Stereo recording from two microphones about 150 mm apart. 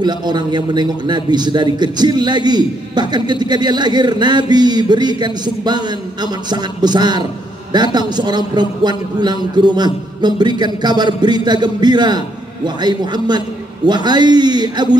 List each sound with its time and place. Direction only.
0.0 s a man's voice: 30° right (ahead or behind)